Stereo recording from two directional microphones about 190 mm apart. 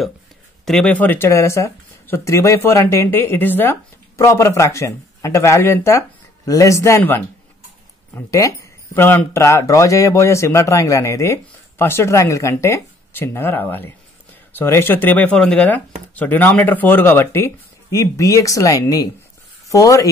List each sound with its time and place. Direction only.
0.7 s speech: 5° left (ahead or behind)